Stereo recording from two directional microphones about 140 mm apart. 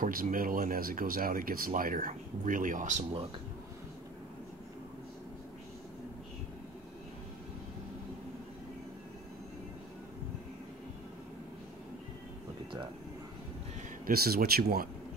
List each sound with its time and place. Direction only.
0.0 s speech: 90° right; by 3.1 s 60° right (ahead or behind)
14.0 s speech: 90° right